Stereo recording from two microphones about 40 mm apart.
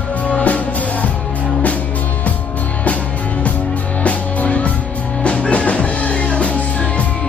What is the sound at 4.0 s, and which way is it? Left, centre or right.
Music, left.